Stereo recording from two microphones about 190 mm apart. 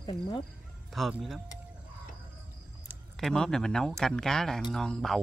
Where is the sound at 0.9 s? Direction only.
Centre (ahead or behind).